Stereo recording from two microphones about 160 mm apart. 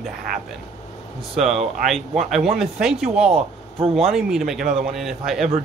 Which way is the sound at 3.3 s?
35° right (ahead or behind).